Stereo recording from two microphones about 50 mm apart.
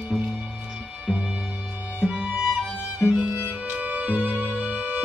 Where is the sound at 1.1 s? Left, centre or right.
Centre.